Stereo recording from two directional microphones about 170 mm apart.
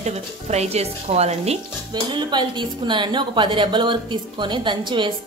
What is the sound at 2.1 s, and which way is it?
A woman's voice, 25° right (ahead or behind).